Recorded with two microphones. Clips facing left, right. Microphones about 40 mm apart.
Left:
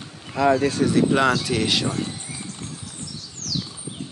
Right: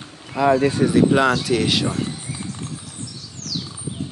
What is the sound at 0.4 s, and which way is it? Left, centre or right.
Speech, centre.